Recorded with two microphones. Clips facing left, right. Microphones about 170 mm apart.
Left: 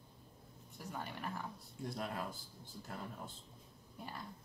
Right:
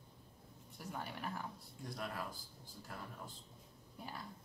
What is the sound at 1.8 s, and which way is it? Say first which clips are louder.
Speech: left 3 dB; 25° left (ahead or behind).